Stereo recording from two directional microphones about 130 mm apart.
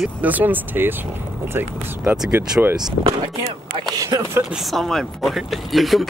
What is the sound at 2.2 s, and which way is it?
Speech, 5° right (ahead or behind).